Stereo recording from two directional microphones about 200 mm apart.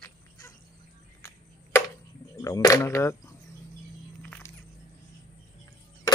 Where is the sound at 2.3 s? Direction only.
20° left (ahead or behind).